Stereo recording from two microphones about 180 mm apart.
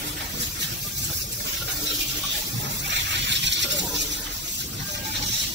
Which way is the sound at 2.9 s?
75° right (ahead or behind).